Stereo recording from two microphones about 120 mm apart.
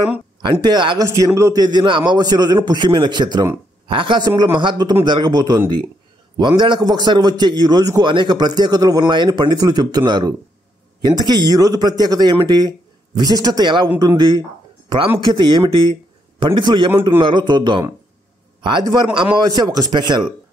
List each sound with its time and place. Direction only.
0.4 s speech: 40° right (ahead or behind)
1.0 s speech: 25° right (ahead or behind)